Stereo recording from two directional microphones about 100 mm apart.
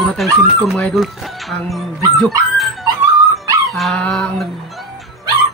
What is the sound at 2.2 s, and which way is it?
Dog, centre (ahead or behind).